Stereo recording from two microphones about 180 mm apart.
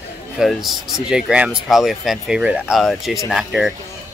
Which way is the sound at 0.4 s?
Centre (ahead or behind).